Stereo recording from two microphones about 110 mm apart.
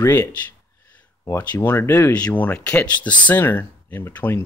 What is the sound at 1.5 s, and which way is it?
Speech, 20° left (ahead or behind).